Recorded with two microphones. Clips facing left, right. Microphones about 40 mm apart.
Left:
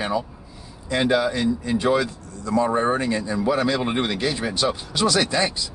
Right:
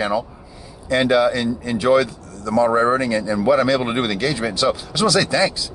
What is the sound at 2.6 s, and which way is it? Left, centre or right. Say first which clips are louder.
Speech: right 4 dB; right.